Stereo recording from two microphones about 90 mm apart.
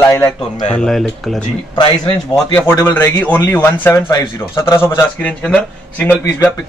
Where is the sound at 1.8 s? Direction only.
70° left (ahead or behind).